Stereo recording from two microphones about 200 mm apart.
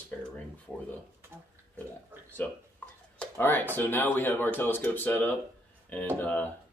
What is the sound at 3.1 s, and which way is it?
Speech, 10° left (ahead or behind).